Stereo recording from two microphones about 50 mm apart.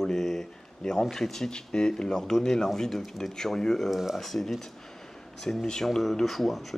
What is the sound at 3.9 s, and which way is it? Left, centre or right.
Speech, centre.